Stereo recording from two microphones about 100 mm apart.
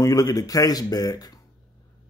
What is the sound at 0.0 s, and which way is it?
A man's voice, 35° left (ahead or behind).